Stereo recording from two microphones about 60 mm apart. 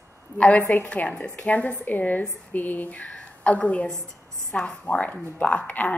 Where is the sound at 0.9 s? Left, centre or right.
Centre.